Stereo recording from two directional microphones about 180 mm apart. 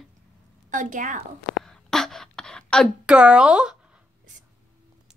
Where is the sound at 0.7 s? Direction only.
45° right (ahead or behind).